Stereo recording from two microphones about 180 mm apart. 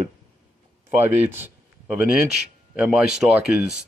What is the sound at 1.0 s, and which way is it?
Speech, 35° right (ahead or behind).